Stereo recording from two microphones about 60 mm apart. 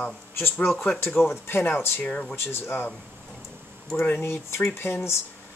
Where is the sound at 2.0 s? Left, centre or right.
Left.